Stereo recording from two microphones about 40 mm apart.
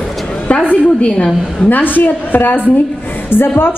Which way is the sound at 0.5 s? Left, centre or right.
Left.